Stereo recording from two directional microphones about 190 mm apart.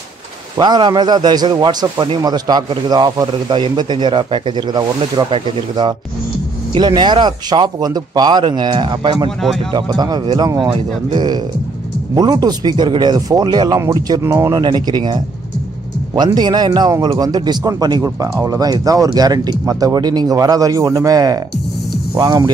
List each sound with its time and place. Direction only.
0.6 s a man's voice: 25° right (ahead or behind)